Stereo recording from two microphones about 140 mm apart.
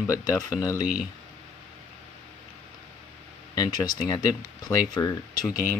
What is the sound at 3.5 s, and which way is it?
Speech, 25° left (ahead or behind).